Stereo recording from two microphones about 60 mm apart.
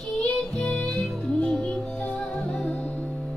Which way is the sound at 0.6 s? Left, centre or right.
Centre.